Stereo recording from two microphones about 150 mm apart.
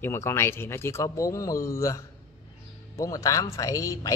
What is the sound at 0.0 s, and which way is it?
Speech, 15° left (ahead or behind).